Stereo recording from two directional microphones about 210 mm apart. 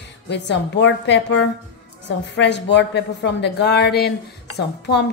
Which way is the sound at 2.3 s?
55° left (ahead or behind).